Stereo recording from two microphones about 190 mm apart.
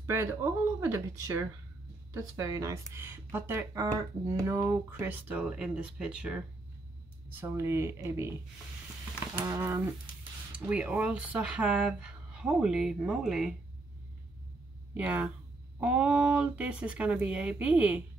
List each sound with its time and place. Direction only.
0.0 s speech: 15° right (ahead or behind)
9.3 s speech: 15° right (ahead or behind)
15.0 s speech: 10° right (ahead or behind)